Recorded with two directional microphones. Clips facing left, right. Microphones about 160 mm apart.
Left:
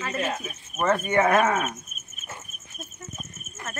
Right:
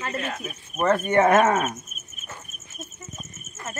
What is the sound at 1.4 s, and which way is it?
Speech, 40° right (ahead or behind).